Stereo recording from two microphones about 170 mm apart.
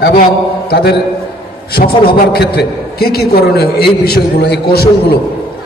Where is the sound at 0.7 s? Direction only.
75° left (ahead or behind).